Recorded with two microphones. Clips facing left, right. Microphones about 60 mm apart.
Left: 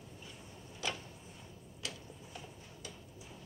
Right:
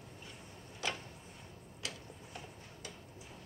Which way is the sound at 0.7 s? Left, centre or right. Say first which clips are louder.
Right 1 dB; right.